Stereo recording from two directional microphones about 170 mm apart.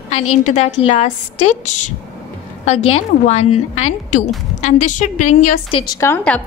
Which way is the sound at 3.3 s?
40° left (ahead or behind).